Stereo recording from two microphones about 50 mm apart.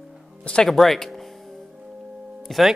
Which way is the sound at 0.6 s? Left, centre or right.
Centre.